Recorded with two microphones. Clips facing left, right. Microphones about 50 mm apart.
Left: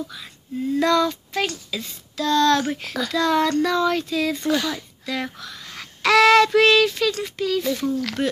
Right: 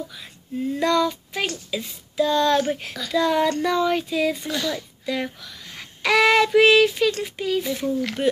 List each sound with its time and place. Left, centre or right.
0.7 s speech: centre
2.9 s speech: centre
3.2 s speech: centre
4.5 s speech: centre
5.0 s speech: centre